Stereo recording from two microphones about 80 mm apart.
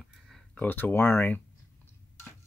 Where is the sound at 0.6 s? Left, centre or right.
Left.